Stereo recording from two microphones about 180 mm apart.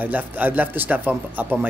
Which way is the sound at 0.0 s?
10° right (ahead or behind).